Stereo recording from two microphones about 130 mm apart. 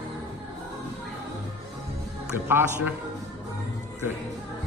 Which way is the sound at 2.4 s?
15° right (ahead or behind).